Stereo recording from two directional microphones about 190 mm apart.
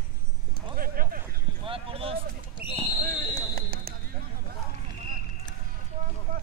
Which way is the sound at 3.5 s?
50° right (ahead or behind).